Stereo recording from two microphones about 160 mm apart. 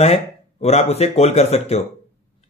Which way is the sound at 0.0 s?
40° left (ahead or behind).